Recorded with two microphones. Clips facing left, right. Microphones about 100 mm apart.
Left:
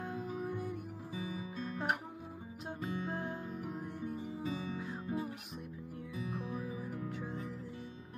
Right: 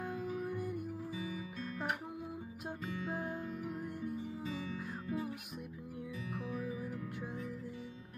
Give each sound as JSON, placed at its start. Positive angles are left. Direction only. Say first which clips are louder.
{"t": 0.5, "sound": "music", "louder": "even", "side_deg": 0}
{"t": 1.1, "sound": "music", "louder": "left 1 dB", "side_deg": 30}
{"t": 3.1, "sound": "music", "louder": "even", "side_deg": -5}
{"t": 4.5, "sound": "music", "louder": "left 2 dB", "side_deg": 30}